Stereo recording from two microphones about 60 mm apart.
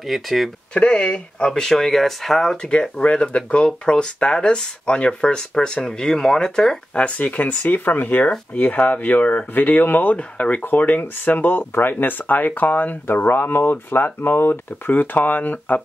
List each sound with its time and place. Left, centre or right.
0.0 s speech: centre
0.7 s speech: left
1.5 s speech: centre
7.0 s speech: left